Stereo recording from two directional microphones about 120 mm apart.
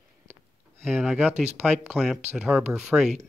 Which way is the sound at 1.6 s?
5° right (ahead or behind).